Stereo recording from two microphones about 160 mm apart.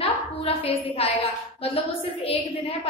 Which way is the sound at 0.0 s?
35° left (ahead or behind).